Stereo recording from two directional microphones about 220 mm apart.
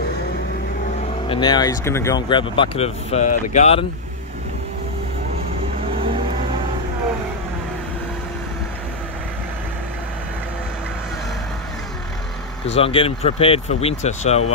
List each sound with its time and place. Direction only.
1.3 s speech: 20° left (ahead or behind)
12.7 s speech: 25° left (ahead or behind)